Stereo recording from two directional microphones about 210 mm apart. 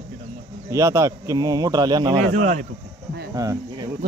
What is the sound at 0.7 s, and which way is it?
A man's voice, 15° right (ahead or behind).